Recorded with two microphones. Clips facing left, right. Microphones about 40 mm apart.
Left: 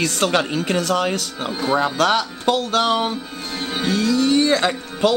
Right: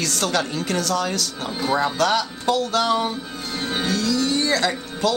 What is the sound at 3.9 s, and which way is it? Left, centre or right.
Music, left.